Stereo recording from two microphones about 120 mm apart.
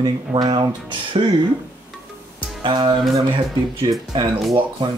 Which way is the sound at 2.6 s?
40° right (ahead or behind).